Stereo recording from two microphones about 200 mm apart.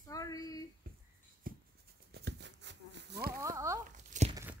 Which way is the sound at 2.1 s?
60° right (ahead or behind).